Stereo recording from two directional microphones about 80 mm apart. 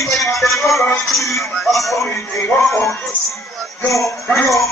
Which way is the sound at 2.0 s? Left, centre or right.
Left.